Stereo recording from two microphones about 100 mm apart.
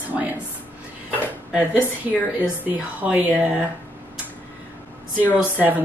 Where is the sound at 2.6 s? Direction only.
15° right (ahead or behind).